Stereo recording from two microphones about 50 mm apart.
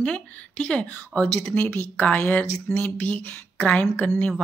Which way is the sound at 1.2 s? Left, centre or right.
Left.